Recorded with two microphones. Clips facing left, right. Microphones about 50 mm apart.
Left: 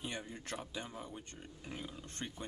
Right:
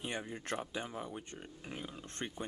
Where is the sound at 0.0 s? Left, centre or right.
Right.